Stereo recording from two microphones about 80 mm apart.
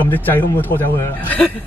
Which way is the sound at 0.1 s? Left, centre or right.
Left.